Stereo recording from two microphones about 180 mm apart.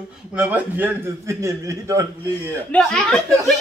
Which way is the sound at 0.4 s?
10° right (ahead or behind).